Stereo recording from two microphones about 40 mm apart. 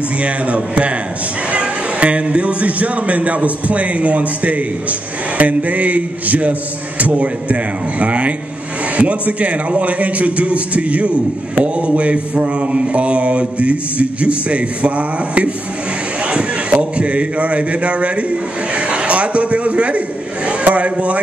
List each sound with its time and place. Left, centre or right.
0.2 s a man's voice: right
18.8 s a sound: right
20.6 s a man's voice: right